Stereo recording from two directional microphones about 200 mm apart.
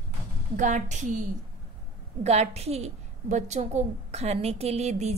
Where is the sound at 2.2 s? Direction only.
35° right (ahead or behind).